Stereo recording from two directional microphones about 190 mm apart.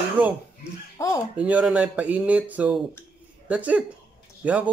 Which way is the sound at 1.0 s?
15° left (ahead or behind).